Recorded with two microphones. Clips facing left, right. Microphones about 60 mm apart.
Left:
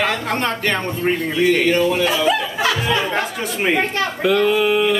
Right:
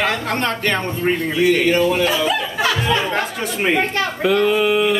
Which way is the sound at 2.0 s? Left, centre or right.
Centre.